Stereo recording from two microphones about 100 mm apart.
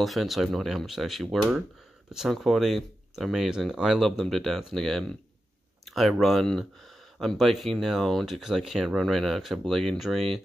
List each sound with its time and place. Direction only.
0.0 s speech: centre (ahead or behind)